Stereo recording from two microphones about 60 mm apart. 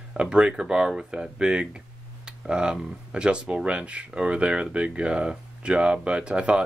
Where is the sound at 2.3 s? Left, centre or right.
Centre.